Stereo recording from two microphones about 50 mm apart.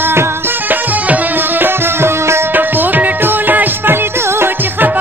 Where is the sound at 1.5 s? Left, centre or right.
Right.